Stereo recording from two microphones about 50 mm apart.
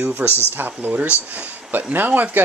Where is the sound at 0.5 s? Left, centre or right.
Right.